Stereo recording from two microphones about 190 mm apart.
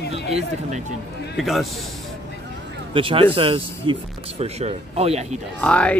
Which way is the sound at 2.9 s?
25° right (ahead or behind).